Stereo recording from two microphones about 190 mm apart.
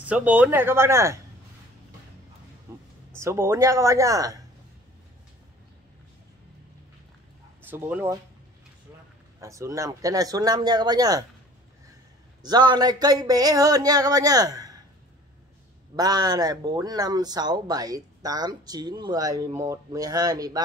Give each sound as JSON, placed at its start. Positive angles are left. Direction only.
{"t": 0.0, "sound": "speech", "side_deg": -10}
{"t": 2.7, "sound": "a sound", "side_deg": -15}
{"t": 3.2, "sound": "speech", "side_deg": -15}
{"t": 7.6, "sound": "speech", "side_deg": -10}
{"t": 9.4, "sound": "speech", "side_deg": -15}
{"t": 12.4, "sound": "speech", "side_deg": -20}
{"t": 16.0, "sound": "speech", "side_deg": -20}